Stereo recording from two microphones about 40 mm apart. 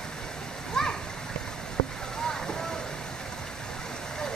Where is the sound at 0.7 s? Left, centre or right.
Centre.